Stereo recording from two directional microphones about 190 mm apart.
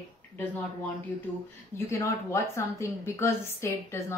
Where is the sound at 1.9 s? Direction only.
15° left (ahead or behind).